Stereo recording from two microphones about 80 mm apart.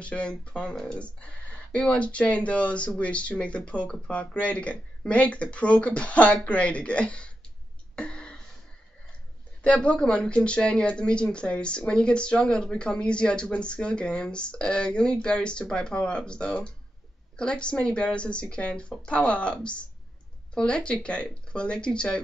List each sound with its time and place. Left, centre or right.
0.0 s speech: centre
7.9 s a sound: centre
9.6 s speech: centre